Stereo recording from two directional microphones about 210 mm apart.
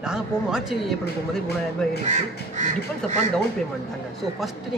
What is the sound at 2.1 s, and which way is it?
Speech, 35° right (ahead or behind).